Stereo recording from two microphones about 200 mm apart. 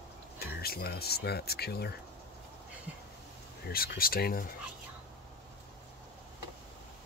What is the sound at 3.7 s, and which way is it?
Speech, 45° left (ahead or behind).